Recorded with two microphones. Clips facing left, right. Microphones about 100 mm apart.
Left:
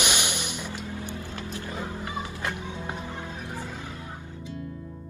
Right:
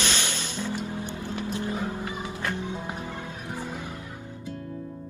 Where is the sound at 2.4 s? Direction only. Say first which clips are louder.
Right 4 dB; 20° left (ahead or behind).